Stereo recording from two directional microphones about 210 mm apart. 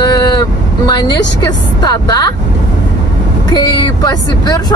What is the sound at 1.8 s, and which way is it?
Speech, 20° left (ahead or behind).